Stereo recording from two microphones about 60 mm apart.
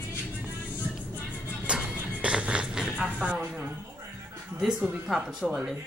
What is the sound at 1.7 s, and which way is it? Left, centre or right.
Music, centre.